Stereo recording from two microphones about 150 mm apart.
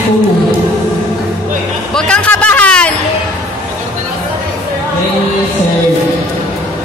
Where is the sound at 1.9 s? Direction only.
10° left (ahead or behind).